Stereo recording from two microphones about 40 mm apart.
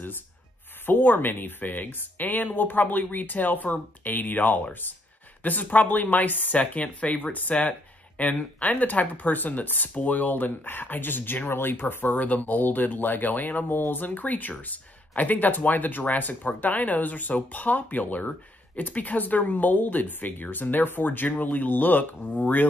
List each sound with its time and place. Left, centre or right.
0.8 s speech: left
6.6 s speech: left
13.7 s speech: left